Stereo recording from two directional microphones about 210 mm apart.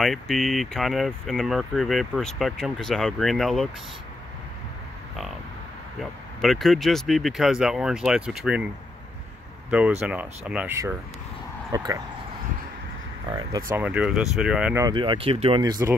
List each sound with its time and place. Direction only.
0.0 s speech: centre (ahead or behind)
6.4 s speech: centre (ahead or behind)
9.7 s speech: 5° right (ahead or behind)
13.7 s speech: 10° right (ahead or behind)
14.9 s speech: 20° right (ahead or behind)